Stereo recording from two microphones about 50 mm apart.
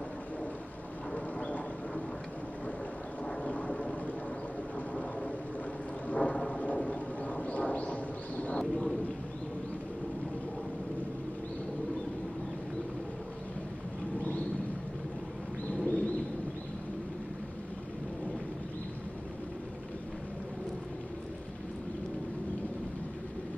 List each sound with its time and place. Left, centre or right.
1.1 s vehicle: left
3.3 s vehicle: left
6.0 s a sound: left
15.7 s bird: left